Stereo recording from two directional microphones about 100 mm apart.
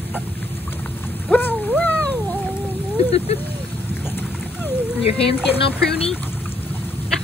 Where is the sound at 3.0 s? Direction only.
80° left.